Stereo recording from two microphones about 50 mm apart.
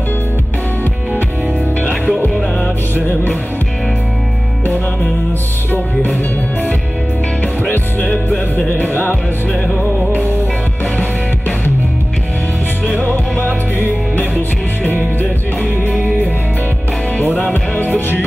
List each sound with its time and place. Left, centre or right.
1.8 s music: left
7.7 s music: left
11.0 s music: left
14.3 s music: left
17.2 s music: left